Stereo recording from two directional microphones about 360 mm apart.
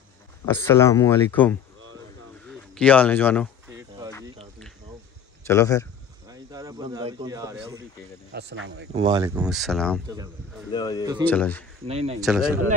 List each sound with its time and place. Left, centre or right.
0.5 s a man's voice: centre
5.4 s speech: centre
6.3 s speech: centre
8.3 s speech: right
8.9 s speech: centre
10.0 s speech: centre
10.7 s speech: centre